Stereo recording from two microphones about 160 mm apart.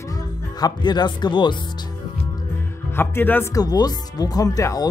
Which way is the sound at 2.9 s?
15° left (ahead or behind).